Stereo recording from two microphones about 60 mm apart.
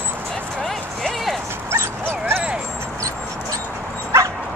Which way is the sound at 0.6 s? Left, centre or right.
Centre.